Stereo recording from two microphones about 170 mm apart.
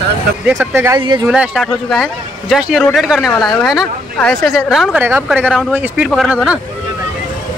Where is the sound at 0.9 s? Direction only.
25° right (ahead or behind).